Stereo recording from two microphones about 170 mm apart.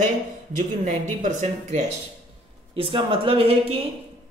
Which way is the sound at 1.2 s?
45° right (ahead or behind).